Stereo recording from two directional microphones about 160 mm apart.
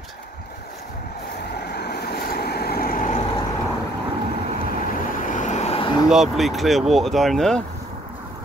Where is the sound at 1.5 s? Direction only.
90° left; by 3.3 s 55° left (ahead or behind).